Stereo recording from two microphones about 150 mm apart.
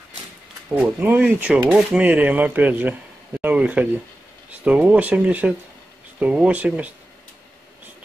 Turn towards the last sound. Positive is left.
turn(degrees=-10)  # may be behind; listen again after turning